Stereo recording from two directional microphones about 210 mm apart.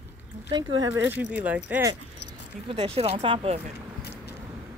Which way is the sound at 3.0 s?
30° right (ahead or behind).